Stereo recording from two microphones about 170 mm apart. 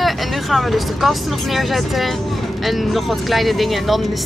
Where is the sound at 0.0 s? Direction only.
Centre (ahead or behind).